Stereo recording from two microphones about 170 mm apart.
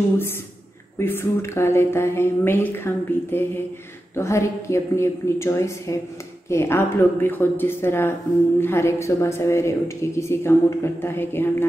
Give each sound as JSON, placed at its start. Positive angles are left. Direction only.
{"t": 0.9, "sound": "speech", "side_deg": 15}